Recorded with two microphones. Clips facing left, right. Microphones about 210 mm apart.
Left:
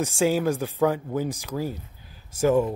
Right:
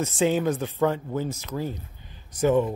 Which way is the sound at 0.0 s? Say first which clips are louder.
Even; 5° left (ahead or behind).